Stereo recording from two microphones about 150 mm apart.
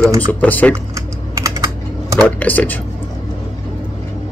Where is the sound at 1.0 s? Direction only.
20° right (ahead or behind).